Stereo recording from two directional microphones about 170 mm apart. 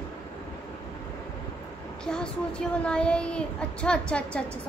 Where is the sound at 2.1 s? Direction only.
5° left (ahead or behind).